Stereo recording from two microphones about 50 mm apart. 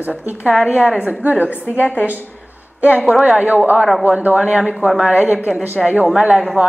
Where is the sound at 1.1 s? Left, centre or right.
Right.